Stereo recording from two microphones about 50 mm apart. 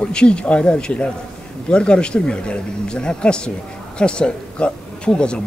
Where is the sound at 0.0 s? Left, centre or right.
Centre.